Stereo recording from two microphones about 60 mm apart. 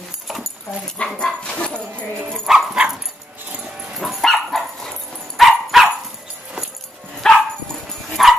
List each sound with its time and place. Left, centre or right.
0.9 s dog: centre
2.4 s speech: centre
3.6 s dog: centre
4.0 s dog: centre
7.2 s dog: centre
8.2 s dog: centre